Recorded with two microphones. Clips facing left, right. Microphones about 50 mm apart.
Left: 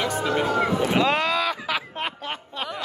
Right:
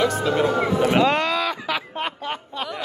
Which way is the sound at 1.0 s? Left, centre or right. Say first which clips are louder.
Right 2 dB; centre.